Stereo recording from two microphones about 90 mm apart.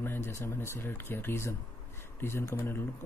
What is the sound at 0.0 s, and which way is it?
Speech, 25° left (ahead or behind).